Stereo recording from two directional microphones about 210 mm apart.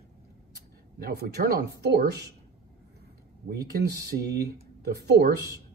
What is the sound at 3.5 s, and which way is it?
Speech, 50° right (ahead or behind).